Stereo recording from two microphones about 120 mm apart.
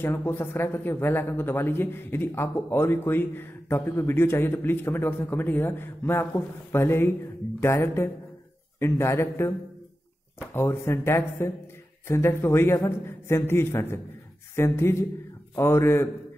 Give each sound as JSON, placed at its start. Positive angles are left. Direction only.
{"t": 0.0, "sound": "speech", "side_deg": 20}
{"t": 10.5, "sound": "speech", "side_deg": 20}